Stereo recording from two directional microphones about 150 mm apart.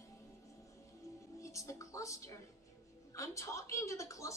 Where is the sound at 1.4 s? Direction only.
20° left (ahead or behind).